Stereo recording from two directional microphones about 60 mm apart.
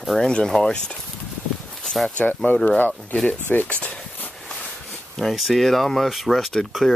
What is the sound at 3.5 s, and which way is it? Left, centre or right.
Speech, left.